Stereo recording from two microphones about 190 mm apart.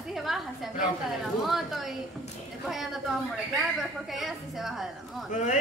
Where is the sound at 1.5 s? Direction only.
Centre (ahead or behind).